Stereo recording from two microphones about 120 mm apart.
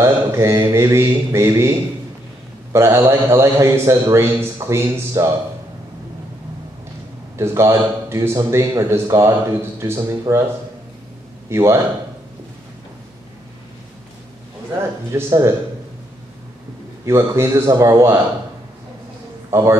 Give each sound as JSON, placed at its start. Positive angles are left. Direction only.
{"t": 0.0, "sound": "a man's voice", "side_deg": -25}
{"t": 2.7, "sound": "a man's voice", "side_deg": -20}
{"t": 7.3, "sound": "a man's voice", "side_deg": -20}
{"t": 11.5, "sound": "a man's voice", "side_deg": -25}
{"t": 14.8, "sound": "a man's voice", "side_deg": -20}
{"t": 17.0, "sound": "a man's voice", "side_deg": -25}
{"t": 19.5, "sound": "a man's voice", "side_deg": -25}